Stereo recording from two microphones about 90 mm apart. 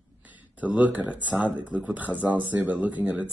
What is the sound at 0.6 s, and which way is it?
Speech, 15° right (ahead or behind).